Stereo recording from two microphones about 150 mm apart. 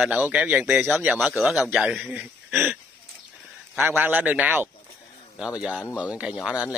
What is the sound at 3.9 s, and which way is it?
Speech, 10° right (ahead or behind).